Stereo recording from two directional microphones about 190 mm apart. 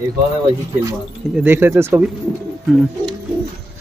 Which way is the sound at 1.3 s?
10° right (ahead or behind).